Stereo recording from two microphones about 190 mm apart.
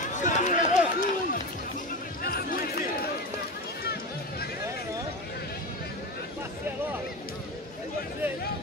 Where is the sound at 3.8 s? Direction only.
55° left (ahead or behind).